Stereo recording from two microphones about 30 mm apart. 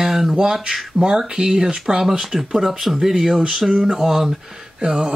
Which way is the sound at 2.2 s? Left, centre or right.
Centre.